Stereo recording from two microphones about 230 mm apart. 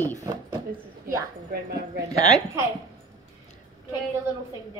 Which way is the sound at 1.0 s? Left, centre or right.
Right.